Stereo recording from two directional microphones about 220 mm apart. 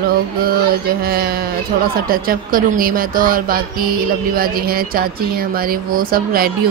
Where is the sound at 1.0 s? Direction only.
45° right (ahead or behind).